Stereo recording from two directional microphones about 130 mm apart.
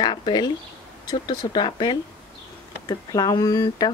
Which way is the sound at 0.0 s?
35° left (ahead or behind).